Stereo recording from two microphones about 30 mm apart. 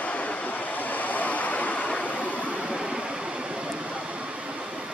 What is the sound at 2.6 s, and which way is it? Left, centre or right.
Vehicle, right.